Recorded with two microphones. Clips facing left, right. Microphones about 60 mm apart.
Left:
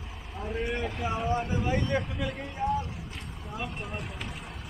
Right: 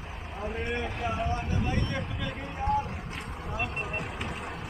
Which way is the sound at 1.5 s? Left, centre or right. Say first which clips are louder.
Left 3 dB; centre.